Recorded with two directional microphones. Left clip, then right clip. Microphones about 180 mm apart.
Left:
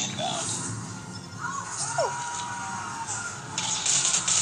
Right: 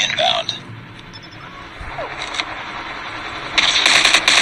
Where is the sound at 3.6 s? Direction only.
35° right (ahead or behind).